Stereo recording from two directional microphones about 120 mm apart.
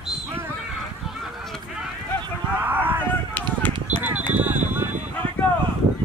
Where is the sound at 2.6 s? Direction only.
15° right (ahead or behind).